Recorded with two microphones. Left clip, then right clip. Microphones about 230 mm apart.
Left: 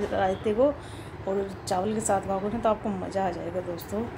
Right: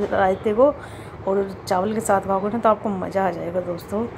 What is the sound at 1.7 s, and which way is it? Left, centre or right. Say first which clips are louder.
A woman's voice: right 6 dB; centre.